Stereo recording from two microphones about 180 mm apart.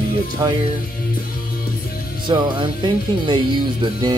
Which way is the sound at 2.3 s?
25° right (ahead or behind).